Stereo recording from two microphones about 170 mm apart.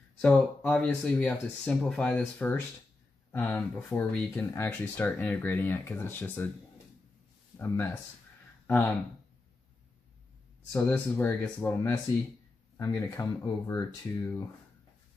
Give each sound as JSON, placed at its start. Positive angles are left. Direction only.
{"t": 0.2, "sound": "speech", "side_deg": 5}
{"t": 7.5, "sound": "speech", "side_deg": 10}
{"t": 10.7, "sound": "speech", "side_deg": 10}